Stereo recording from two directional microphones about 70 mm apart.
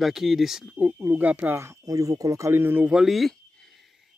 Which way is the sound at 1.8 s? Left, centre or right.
Right.